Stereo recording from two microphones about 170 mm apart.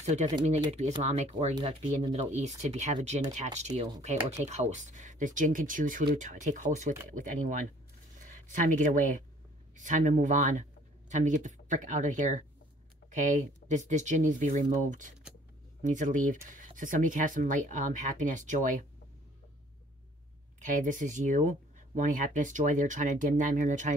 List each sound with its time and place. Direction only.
0.0 s speech: 40° right (ahead or behind)
1.5 s speech: 30° right (ahead or behind)
2.1 s speech: 40° right (ahead or behind)
20.6 s speech: 50° right (ahead or behind)